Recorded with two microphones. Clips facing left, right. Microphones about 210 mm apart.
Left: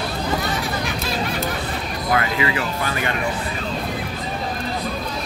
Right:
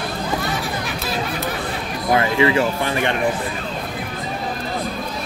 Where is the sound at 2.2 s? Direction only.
30° right (ahead or behind).